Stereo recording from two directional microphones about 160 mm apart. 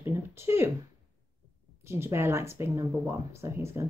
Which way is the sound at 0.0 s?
15° right (ahead or behind).